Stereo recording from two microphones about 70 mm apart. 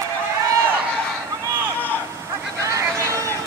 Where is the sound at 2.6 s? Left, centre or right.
Right.